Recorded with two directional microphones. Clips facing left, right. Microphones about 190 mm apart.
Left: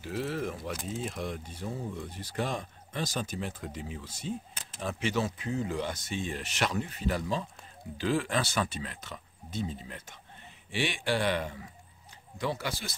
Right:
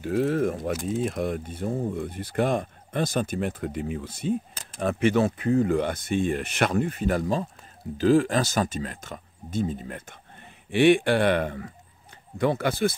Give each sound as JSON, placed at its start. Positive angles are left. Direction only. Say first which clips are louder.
{"t": 0.0, "sound": "speech", "louder": "right 10 dB", "side_deg": -50}